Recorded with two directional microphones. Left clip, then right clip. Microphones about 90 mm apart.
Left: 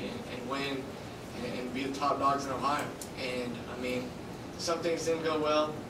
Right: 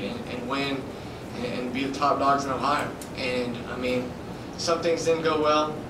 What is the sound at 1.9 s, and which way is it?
Speech, 5° right (ahead or behind).